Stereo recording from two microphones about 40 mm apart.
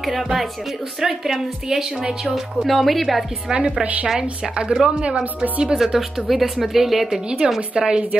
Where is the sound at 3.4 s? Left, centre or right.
Right.